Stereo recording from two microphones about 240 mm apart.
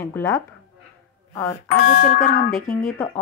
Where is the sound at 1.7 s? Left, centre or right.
Left.